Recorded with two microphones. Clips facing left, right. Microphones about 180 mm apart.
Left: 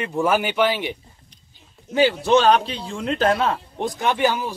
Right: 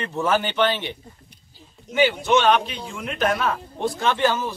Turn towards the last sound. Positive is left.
turn(degrees=15)  # may be behind; listen again after turning